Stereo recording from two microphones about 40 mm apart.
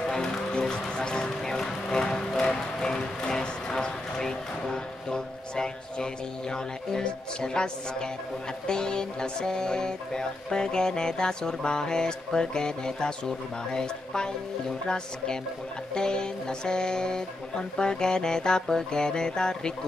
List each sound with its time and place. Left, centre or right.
0.0 s music: centre
6.5 s speech: centre
8.6 s music: centre
15.9 s speech: centre